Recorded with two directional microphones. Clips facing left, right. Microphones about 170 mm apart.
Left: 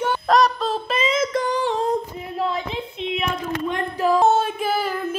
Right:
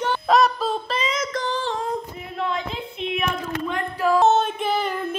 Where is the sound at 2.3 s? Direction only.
35° left (ahead or behind).